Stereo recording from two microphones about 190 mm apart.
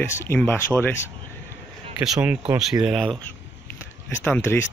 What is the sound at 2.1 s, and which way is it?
Speech, 5° right (ahead or behind).